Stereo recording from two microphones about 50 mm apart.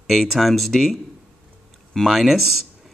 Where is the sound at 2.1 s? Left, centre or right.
Centre.